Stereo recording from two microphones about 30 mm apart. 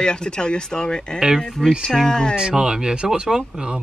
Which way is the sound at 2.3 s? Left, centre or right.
Right.